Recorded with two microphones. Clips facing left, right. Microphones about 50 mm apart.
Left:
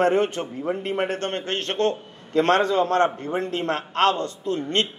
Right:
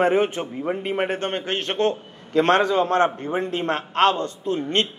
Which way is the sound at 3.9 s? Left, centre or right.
Right.